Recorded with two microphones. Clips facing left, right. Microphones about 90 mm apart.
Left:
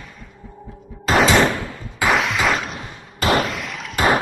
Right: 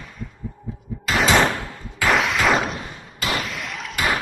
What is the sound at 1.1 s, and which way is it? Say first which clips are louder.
Door: left 6 dB; 35° left (ahead or behind).